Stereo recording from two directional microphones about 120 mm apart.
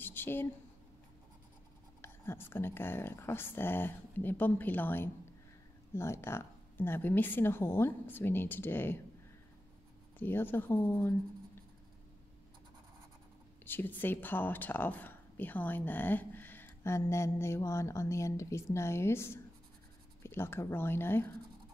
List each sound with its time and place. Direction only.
0.0 s a sound: 15° left (ahead or behind)
2.0 s speech: 20° left (ahead or behind)
10.1 s speech: 15° left (ahead or behind)
13.7 s speech: 15° left (ahead or behind)